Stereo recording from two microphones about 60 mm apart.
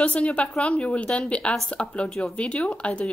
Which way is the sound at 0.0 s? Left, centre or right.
Left.